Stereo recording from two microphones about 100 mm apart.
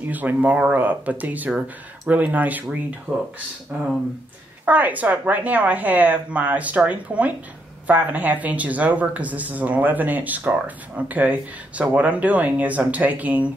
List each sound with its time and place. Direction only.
0.0 s speech: 20° right (ahead or behind)